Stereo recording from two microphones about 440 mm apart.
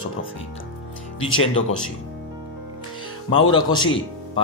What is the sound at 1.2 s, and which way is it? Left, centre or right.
Speech, centre.